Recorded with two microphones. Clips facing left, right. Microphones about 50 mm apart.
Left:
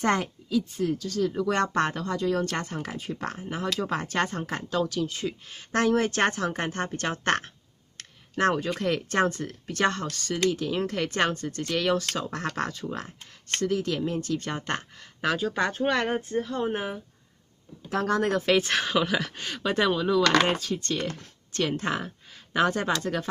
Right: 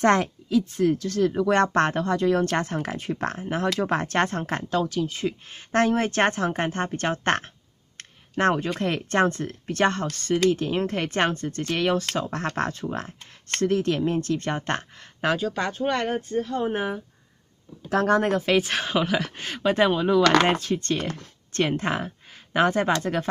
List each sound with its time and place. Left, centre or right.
0.0 s speech: right
4.7 s speech: right
8.0 s a sound: right
8.7 s speech: right
15.3 s speech: centre
18.4 s speech: centre; by 20.4 s right
20.4 s speech: right
20.7 s speech: right
21.6 s speech: right